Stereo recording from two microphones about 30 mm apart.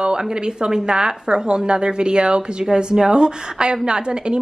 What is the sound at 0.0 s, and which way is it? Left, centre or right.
A woman's voice, right.